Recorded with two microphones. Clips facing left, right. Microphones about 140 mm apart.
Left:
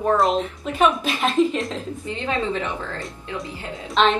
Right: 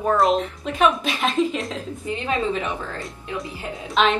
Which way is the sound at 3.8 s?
Centre (ahead or behind).